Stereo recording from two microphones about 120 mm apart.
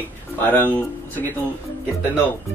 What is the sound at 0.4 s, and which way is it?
Speech, 15° left (ahead or behind).